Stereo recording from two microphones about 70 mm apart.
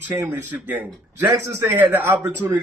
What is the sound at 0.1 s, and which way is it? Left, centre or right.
A man's voice, right.